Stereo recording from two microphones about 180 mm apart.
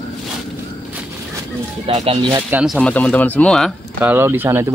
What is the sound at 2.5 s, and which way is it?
Speech, centre (ahead or behind).